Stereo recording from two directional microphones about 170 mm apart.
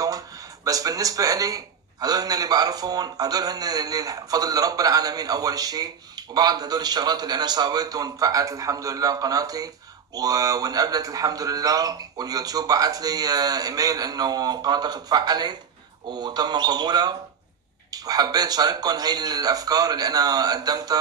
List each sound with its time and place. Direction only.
0.7 s a man's voice: 20° right (ahead or behind)